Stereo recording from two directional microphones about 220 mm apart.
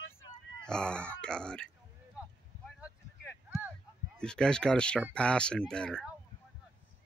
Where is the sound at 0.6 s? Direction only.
5° left (ahead or behind).